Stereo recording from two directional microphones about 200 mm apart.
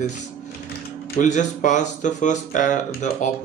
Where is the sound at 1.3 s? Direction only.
35° left (ahead or behind).